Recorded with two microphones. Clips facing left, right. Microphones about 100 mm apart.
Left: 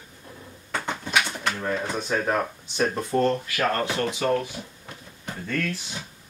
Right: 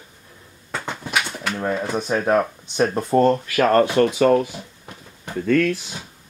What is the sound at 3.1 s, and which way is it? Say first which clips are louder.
Speech: right 6 dB; 45° right (ahead or behind).